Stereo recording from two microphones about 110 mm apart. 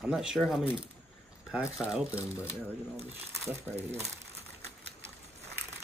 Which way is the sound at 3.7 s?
25° right (ahead or behind).